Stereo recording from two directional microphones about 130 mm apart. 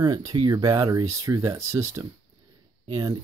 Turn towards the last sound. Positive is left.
turn(degrees=-30)  # may be behind; listen again after turning